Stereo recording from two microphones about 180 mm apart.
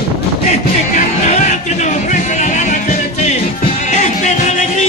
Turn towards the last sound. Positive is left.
turn(degrees=40)  # may be behind; listen again after turning